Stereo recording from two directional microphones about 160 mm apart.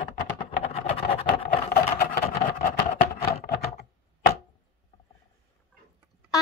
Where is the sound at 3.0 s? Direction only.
75° left (ahead or behind).